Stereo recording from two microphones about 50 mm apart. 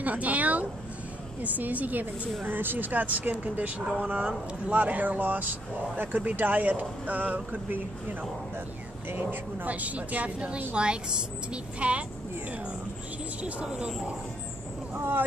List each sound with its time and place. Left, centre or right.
0.0 s speech: right
9.7 s speech: right
13.4 s speech: right
15.0 s speech: right